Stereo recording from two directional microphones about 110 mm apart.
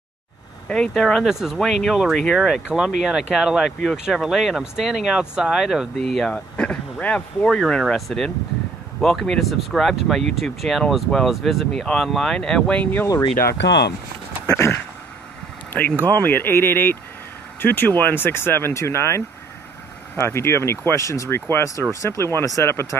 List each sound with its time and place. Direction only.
0.7 s speech: 5° left (ahead or behind)
14.5 s speech: 25° left (ahead or behind)